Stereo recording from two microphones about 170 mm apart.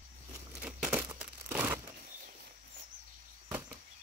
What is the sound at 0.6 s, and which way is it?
Crumpling, 5° right (ahead or behind).